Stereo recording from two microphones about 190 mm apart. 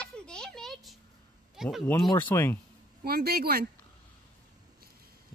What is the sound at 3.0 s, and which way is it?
Speech, 55° right (ahead or behind).